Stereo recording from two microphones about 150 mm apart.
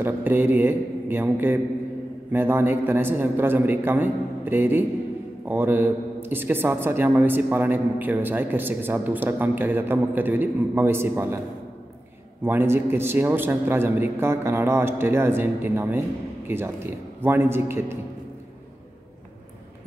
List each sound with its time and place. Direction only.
0.0 s a man's voice: 15° right (ahead or behind)
12.4 s a man's voice: 15° right (ahead or behind)